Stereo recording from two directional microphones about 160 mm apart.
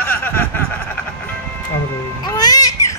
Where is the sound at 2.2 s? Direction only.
25° left (ahead or behind).